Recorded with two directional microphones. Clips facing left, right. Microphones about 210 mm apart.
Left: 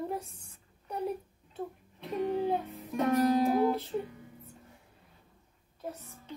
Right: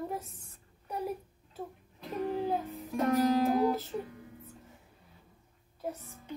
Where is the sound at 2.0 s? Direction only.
Centre (ahead or behind).